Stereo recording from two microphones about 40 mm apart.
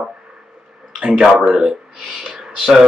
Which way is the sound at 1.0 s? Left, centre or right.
Centre.